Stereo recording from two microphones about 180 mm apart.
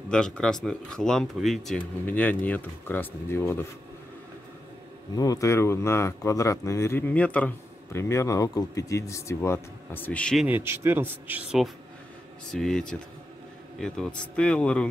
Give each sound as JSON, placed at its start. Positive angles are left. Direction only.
{"t": 0.1, "sound": "speech", "side_deg": 5}
{"t": 5.1, "sound": "speech", "side_deg": 20}
{"t": 10.4, "sound": "a man's voice", "side_deg": -10}